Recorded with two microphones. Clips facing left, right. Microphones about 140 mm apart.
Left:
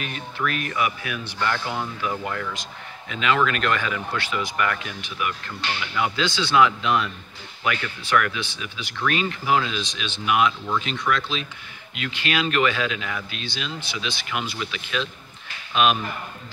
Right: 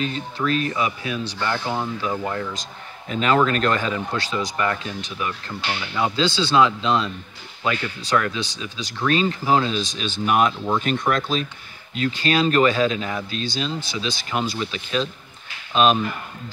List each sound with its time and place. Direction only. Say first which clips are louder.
0.0 s speech: right 4 dB; 30° right (ahead or behind)
3.1 s speech: right 3 dB; 40° right (ahead or behind)